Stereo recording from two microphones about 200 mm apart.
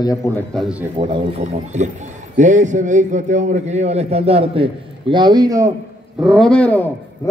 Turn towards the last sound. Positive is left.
turn(degrees=5)  # may be behind; listen again after turning